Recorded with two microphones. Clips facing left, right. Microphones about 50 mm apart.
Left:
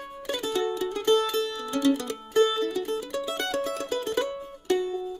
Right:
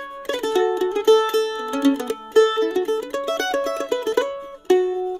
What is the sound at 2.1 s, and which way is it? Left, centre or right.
Mandolin, right.